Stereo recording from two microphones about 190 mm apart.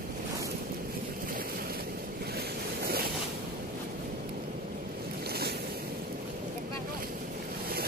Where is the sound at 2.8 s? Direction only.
55° right (ahead or behind).